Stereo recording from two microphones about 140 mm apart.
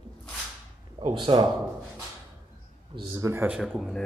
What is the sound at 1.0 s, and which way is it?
Speech, 40° right (ahead or behind).